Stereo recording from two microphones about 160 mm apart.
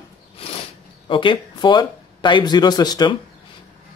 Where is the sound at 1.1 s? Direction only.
30° left (ahead or behind).